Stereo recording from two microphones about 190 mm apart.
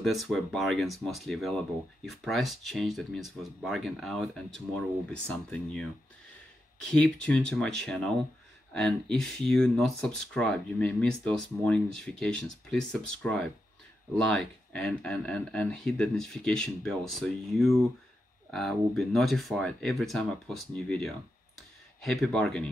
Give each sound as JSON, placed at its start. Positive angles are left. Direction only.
{"t": 0.0, "sound": "speech", "side_deg": 0}
{"t": 6.9, "sound": "speech", "side_deg": 5}
{"t": 21.5, "sound": "a sound", "side_deg": 0}